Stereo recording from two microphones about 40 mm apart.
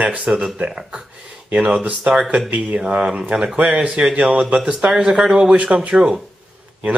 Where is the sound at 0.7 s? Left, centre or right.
Centre.